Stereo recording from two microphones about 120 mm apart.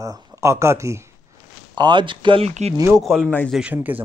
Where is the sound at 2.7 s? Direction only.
25° right (ahead or behind).